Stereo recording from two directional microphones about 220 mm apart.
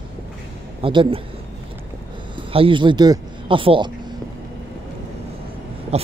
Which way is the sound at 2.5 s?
25° right (ahead or behind).